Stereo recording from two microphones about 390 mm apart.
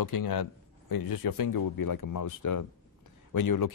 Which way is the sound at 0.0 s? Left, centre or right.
Left.